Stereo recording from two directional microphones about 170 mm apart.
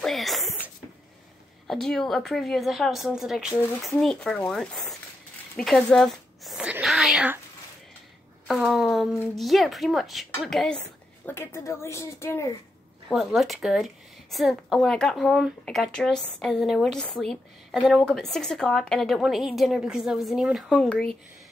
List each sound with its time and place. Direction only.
0.0 s a sound: centre (ahead or behind)
1.7 s speech: centre (ahead or behind)
5.6 s a sound: 5° left (ahead or behind)
8.5 s speech: centre (ahead or behind)
11.2 s a woman's voice: 15° left (ahead or behind)
13.1 s speech: centre (ahead or behind)